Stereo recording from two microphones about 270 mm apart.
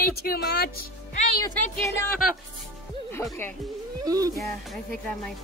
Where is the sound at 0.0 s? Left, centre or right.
Left.